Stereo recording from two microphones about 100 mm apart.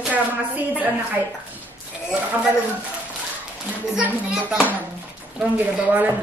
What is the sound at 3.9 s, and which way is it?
Speech, 15° right (ahead or behind).